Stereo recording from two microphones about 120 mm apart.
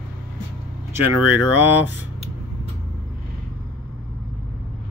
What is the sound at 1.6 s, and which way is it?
Speech, 15° right (ahead or behind).